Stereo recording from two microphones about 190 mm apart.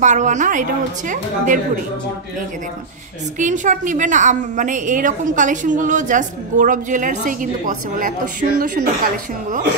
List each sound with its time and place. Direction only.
0.0 s a woman's voice: 40° right (ahead or behind)
3.3 s a woman's voice: 40° right (ahead or behind)